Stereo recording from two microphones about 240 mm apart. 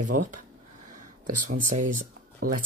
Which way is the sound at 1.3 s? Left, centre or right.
Right.